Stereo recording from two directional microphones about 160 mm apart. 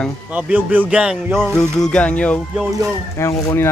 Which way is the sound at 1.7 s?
5° left (ahead or behind).